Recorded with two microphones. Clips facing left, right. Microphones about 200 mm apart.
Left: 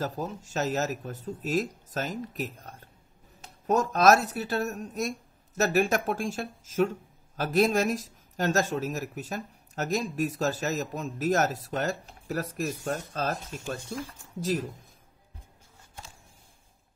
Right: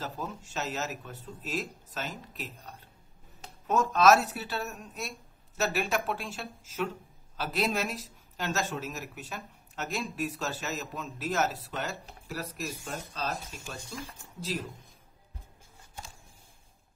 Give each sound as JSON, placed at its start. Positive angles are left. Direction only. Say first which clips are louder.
{"t": 0.0, "sound": "speech", "louder": "left 5 dB", "side_deg": 40}